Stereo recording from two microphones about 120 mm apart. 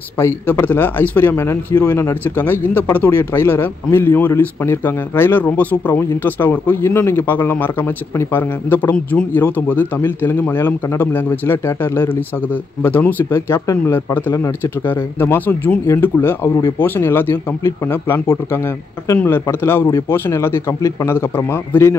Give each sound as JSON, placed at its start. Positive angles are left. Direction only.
{"t": 0.2, "sound": "speech", "side_deg": 15}